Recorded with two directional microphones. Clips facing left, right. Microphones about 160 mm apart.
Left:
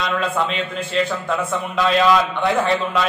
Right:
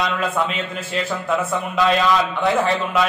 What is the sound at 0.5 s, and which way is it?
Speech, 5° right (ahead or behind).